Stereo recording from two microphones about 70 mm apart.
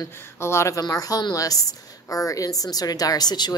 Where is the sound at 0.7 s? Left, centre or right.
Left.